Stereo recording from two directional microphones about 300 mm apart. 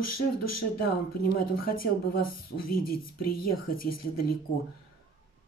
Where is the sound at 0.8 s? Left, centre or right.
Left.